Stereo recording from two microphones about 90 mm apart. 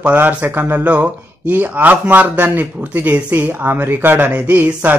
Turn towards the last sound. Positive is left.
turn(degrees=-20)  # may be behind; listen again after turning